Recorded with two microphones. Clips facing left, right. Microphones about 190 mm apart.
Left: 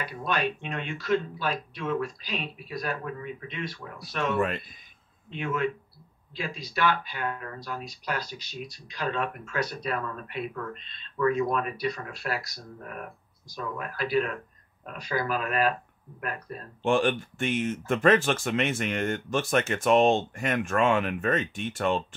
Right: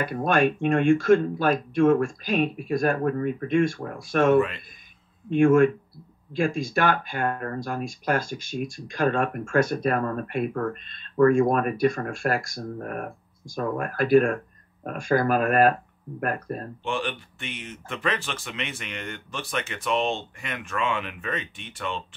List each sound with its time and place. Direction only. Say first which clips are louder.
0.0 s speech: right 8 dB; 50° right (ahead or behind)
16.8 s speech: left 8 dB; 45° left (ahead or behind)